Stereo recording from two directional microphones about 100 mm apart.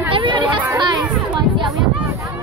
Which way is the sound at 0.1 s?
55° right (ahead or behind).